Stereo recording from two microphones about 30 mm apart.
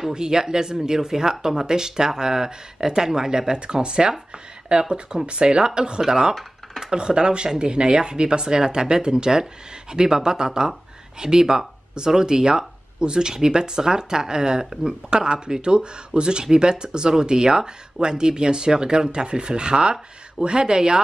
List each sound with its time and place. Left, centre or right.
0.1 s speech: right